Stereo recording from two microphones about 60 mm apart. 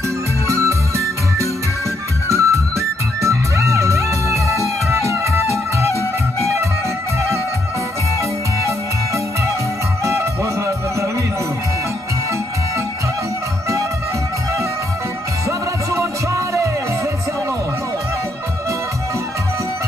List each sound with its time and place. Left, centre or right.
0.5 s music: right
10.0 s music: right
15.9 s music: right